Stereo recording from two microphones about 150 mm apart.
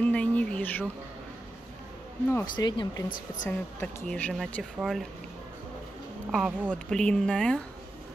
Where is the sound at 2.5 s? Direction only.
30° left (ahead or behind).